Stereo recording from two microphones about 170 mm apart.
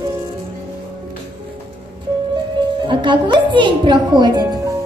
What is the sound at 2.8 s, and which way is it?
A woman's voice, 30° right (ahead or behind).